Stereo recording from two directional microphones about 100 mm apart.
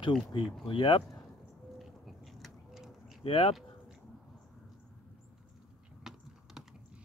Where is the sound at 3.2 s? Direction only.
70° left (ahead or behind).